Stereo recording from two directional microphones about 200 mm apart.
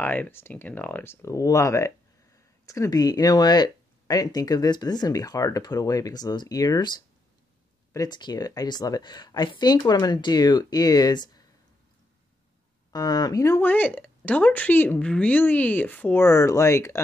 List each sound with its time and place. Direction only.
0.0 s speech: 10° left (ahead or behind)
12.9 s speech: 20° left (ahead or behind)